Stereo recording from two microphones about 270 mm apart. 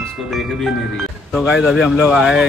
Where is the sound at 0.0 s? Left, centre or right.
Centre.